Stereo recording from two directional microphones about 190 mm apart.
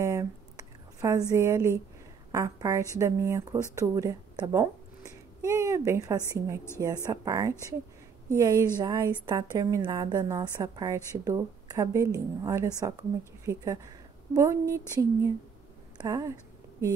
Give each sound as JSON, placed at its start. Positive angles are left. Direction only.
{"t": 0.0, "sound": "whispering", "side_deg": -15}
{"t": 1.3, "sound": "a woman's voice", "side_deg": -15}
{"t": 14.3, "sound": "a woman's voice", "side_deg": -15}